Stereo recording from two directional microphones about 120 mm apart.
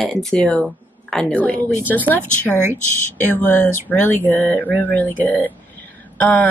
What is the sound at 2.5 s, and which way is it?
Speech, 20° right (ahead or behind).